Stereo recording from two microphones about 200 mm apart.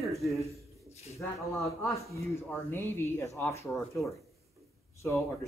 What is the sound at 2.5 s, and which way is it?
Speech, 10° left (ahead or behind).